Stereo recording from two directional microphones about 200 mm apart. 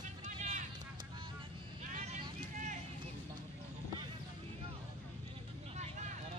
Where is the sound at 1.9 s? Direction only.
35° right (ahead or behind).